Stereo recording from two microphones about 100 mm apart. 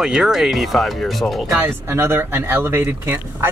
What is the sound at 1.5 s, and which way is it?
Speech, 25° right (ahead or behind).